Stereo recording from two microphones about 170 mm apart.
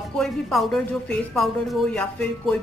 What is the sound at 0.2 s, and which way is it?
A woman's voice, centre (ahead or behind).